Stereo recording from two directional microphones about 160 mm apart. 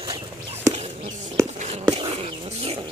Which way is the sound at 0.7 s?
45° right (ahead or behind).